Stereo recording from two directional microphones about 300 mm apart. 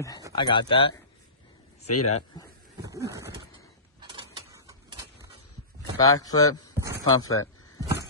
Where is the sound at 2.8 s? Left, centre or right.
Centre.